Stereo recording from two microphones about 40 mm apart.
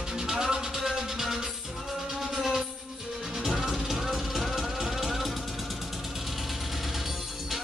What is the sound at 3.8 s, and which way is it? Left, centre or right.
Vehicle, centre.